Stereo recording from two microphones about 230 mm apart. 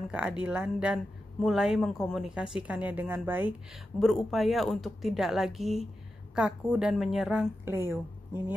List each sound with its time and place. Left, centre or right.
0.1 s speech: centre